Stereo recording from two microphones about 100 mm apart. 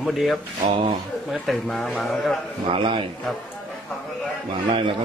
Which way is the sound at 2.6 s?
60° right (ahead or behind).